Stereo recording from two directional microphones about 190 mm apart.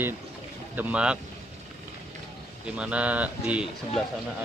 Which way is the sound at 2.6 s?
5° right (ahead or behind).